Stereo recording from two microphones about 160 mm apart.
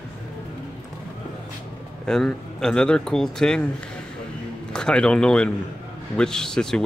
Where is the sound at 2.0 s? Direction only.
5° left (ahead or behind).